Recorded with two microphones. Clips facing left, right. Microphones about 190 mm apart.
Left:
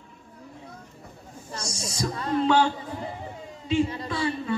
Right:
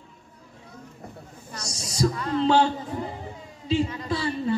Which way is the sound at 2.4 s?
30° right (ahead or behind).